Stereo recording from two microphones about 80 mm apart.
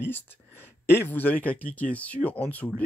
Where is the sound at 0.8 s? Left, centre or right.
Left.